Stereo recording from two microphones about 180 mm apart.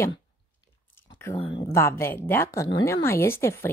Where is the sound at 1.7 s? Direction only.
15° left (ahead or behind).